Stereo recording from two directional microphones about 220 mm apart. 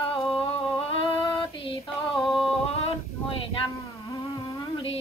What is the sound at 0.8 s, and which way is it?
Female singing, 20° left (ahead or behind).